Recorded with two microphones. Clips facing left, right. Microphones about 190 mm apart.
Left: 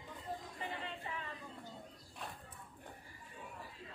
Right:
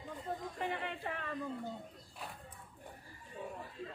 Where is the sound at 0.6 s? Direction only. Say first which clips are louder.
Right 5 dB; 60° right (ahead or behind).